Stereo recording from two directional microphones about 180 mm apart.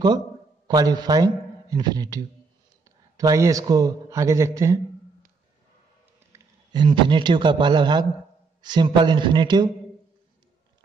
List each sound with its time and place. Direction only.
0.7 s a man's voice: 20° right (ahead or behind)
6.3 s a man's voice: 25° right (ahead or behind)